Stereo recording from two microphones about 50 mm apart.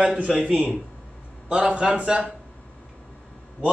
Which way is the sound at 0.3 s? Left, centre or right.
Centre.